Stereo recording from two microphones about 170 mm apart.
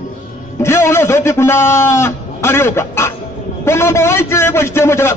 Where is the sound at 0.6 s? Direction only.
15° left (ahead or behind).